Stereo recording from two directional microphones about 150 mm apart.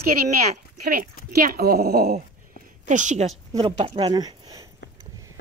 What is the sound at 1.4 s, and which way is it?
Speech, 85° right.